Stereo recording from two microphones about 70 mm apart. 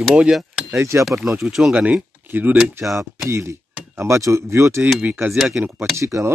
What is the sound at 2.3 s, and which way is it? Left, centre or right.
Speech, right.